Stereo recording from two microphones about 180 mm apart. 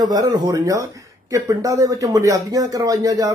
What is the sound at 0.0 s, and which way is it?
Speech, 20° right (ahead or behind).